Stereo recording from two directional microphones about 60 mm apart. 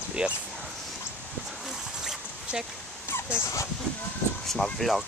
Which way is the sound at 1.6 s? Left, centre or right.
Centre.